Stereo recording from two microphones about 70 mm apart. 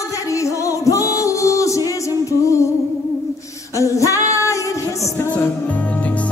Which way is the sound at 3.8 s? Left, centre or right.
Left.